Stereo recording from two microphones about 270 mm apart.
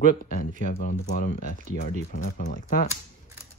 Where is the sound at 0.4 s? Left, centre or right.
Left.